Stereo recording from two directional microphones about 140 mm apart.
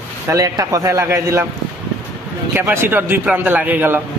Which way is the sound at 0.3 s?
25° right (ahead or behind).